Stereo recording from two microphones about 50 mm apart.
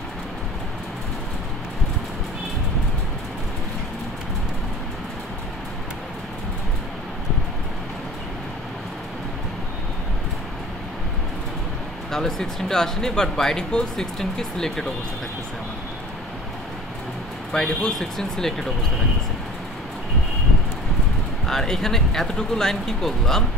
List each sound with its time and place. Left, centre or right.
12.1 s speech: centre
17.5 s speech: centre
21.5 s speech: centre